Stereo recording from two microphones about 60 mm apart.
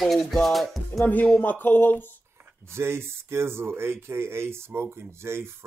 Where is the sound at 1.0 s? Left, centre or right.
Left.